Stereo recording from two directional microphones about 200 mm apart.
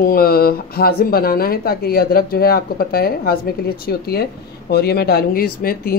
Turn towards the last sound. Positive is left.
turn(degrees=50)  # may be behind; listen again after turning